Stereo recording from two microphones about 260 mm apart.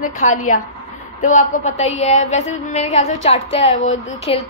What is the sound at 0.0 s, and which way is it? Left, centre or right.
A woman's voice, left.